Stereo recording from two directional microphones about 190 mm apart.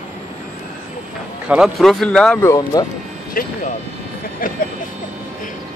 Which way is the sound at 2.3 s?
15° left (ahead or behind).